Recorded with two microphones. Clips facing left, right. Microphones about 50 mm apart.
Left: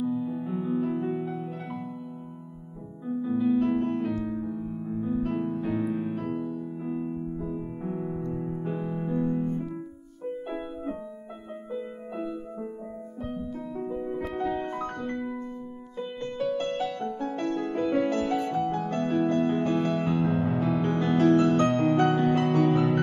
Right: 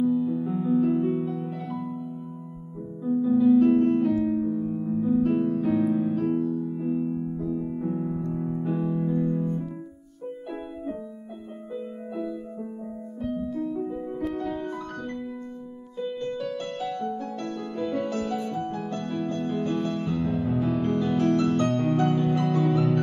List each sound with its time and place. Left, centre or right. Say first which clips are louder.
0.0 s music: right 5 dB; centre
1.1 s music: right 3 dB; left
3.4 s music: right 6 dB; centre
4.3 s keyboard: right 6 dB; centre
5.1 s music: right 6 dB; centre
7.5 s music: right 4 dB; left
9.2 s piano: right 1 dB; left
14.3 s music: left 1 dB; left
14.6 s music: left 1 dB; left
18.5 s music: left 3 dB; left
18.9 s music: left 4 dB; left
20.6 s music: right 1 dB; left
21.4 s music: left 2 dB; left
22.0 s music: left 1 dB; left